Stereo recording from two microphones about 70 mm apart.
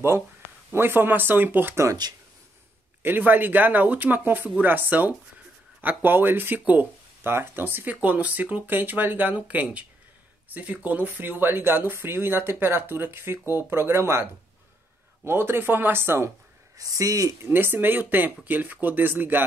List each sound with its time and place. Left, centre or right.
0.7 s speech: right
1.9 s speech: right
3.0 s speech: right
16.7 s speech: right
17.4 s speech: right